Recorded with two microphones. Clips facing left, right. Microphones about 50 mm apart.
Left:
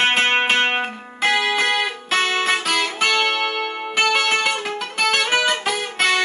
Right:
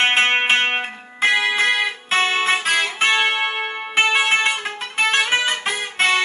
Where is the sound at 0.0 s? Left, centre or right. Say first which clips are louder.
Even; right.